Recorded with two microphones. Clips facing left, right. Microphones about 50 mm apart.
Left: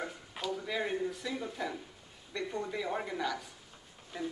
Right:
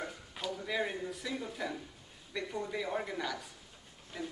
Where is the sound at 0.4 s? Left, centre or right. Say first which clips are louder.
Even; centre.